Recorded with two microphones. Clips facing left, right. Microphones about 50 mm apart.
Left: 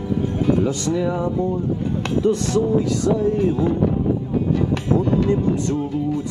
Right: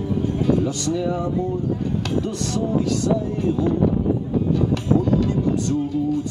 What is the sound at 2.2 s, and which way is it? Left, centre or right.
Music, left.